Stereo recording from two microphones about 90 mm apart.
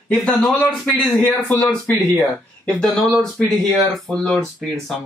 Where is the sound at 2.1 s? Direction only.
Centre (ahead or behind).